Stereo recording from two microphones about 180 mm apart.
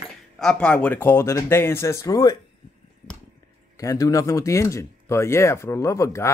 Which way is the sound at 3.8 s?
20° left (ahead or behind).